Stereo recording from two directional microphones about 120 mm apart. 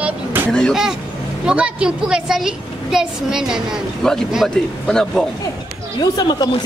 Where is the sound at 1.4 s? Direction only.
10° right (ahead or behind).